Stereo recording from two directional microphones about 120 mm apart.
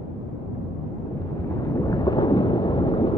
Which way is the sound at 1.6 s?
30° left (ahead or behind).